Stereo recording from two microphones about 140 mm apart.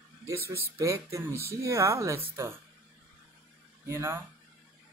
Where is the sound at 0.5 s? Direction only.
20° right (ahead or behind).